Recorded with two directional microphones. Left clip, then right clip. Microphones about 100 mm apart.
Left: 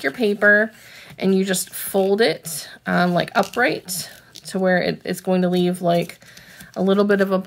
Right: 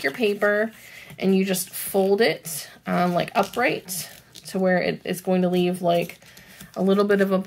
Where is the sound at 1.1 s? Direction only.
50° left (ahead or behind).